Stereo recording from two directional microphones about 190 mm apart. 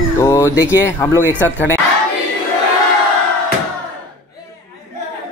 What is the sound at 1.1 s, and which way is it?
Speech, 10° right (ahead or behind).